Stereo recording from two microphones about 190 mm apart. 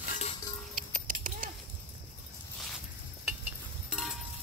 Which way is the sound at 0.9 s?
45° right (ahead or behind).